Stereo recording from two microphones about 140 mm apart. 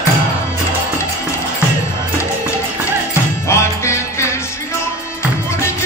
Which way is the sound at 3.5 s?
20° left (ahead or behind).